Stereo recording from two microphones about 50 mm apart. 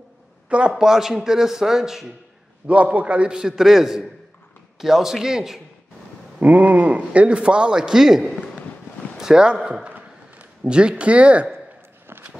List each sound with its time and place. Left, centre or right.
0.5 s a man's voice: right
2.6 s a man's voice: right
3.3 s a man's voice: centre
6.4 s a man's voice: right; by 8.3 s centre
9.1 s a sound: centre
9.8 s a sound: right
10.7 s a man's voice: centre